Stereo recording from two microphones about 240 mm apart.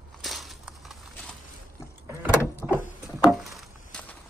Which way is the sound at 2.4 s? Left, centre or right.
Centre.